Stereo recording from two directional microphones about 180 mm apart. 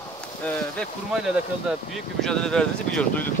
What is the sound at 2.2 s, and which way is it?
Speech, 5° left (ahead or behind).